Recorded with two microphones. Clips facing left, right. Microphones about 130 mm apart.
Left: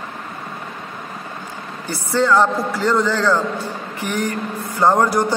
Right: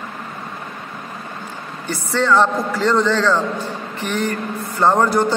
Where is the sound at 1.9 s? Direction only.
10° left (ahead or behind).